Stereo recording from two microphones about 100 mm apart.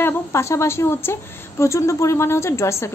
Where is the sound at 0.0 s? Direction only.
30° left (ahead or behind).